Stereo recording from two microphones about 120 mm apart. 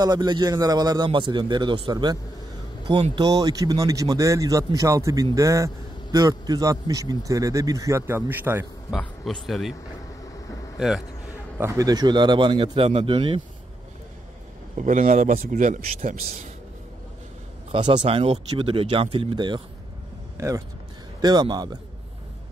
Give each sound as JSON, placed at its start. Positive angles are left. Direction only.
{"t": 0.0, "sound": "a man's voice", "side_deg": -35}
{"t": 3.2, "sound": "a man's voice", "side_deg": -35}
{"t": 8.9, "sound": "speech", "side_deg": 0}
{"t": 10.8, "sound": "speech", "side_deg": 0}
{"t": 11.5, "sound": "a man's voice", "side_deg": -25}
{"t": 14.8, "sound": "speech", "side_deg": -90}
{"t": 17.7, "sound": "speech", "side_deg": -40}
{"t": 20.3, "sound": "speech", "side_deg": -25}
{"t": 21.2, "sound": "a man's voice", "side_deg": -35}